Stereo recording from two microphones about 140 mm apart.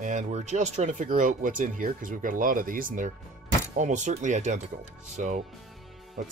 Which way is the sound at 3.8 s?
60° right (ahead or behind).